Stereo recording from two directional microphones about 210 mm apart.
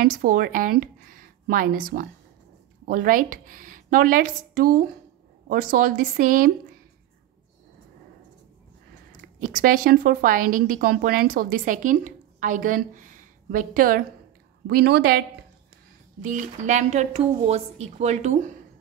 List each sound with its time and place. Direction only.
0.0 s a woman's voice: 40° right (ahead or behind)
9.4 s a woman's voice: 40° right (ahead or behind)
16.2 s a woman's voice: 35° right (ahead or behind)